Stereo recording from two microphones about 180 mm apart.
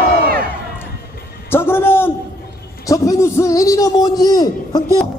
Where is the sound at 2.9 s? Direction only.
20° left (ahead or behind).